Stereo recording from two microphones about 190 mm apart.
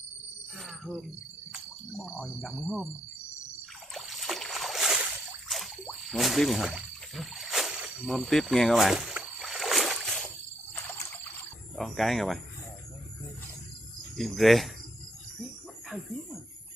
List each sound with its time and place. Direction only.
0.6 s jingle bell: centre (ahead or behind)
1.5 s speech: centre (ahead or behind)
3.9 s boat: centre (ahead or behind)
11.7 s speech: centre (ahead or behind)
14.1 s speech: centre (ahead or behind)